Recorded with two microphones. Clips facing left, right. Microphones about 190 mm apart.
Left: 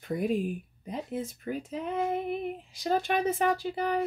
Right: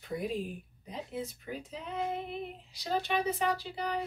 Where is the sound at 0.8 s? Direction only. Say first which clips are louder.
Left 4 dB; 50° left (ahead or behind).